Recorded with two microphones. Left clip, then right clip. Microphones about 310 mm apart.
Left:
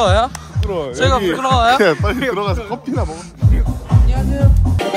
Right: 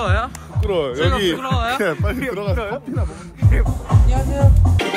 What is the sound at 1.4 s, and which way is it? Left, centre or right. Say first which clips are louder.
Speech: left 8 dB; centre.